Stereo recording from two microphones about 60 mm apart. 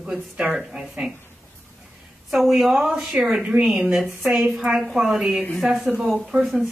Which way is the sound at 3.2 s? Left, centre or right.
Centre.